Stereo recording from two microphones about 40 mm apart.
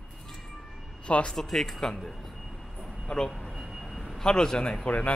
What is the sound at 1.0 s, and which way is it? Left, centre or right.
Speech, left.